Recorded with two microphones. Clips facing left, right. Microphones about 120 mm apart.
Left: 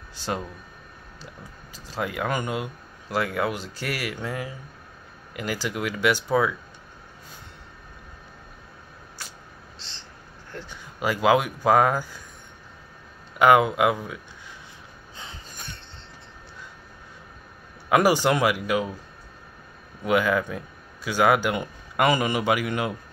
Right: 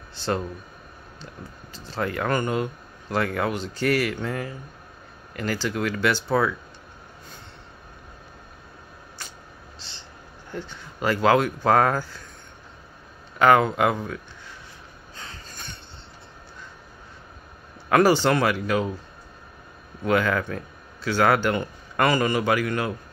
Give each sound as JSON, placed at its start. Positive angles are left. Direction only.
{"t": 0.1, "sound": "speech", "side_deg": 10}
{"t": 9.2, "sound": "vehicle", "side_deg": 5}
{"t": 9.8, "sound": "train", "side_deg": -5}
{"t": 10.7, "sound": "speech", "side_deg": 10}
{"t": 13.4, "sound": "speech", "side_deg": 10}
{"t": 15.1, "sound": "a sound", "side_deg": 15}
{"t": 17.8, "sound": "speech", "side_deg": 10}
{"t": 20.0, "sound": "speech", "side_deg": 10}